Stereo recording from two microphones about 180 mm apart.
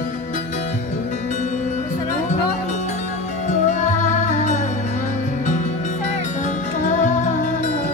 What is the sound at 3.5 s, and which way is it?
Music, 40° left (ahead or behind).